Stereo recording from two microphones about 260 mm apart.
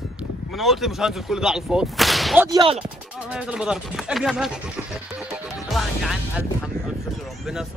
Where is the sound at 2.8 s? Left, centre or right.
Centre.